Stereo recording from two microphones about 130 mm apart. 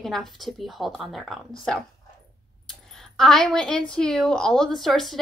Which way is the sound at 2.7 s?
5° left (ahead or behind).